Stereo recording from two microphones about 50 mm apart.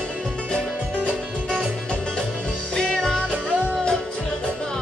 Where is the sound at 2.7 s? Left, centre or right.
Centre.